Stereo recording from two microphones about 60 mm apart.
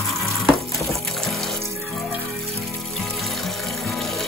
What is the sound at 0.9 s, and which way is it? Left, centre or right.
Music, centre.